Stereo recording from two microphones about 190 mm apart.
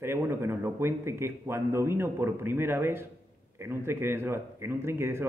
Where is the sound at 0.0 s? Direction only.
10° right (ahead or behind).